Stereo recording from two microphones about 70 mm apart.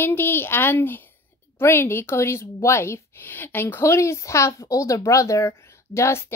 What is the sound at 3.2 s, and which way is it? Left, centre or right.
A woman's voice, left.